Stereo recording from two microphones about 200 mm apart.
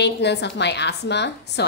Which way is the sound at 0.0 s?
60° left (ahead or behind).